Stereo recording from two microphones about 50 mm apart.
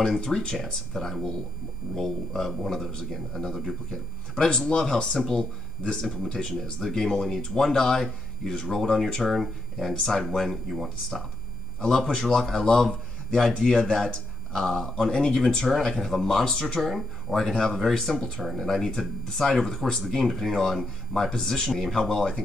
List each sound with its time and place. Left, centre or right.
0.0 s a man's voice: centre
4.5 s a man's voice: centre